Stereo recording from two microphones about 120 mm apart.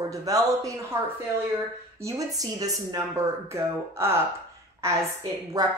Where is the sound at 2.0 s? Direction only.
30° right (ahead or behind).